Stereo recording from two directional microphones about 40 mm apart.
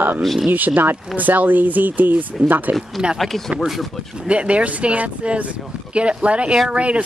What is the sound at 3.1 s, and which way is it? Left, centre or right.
Speech, centre.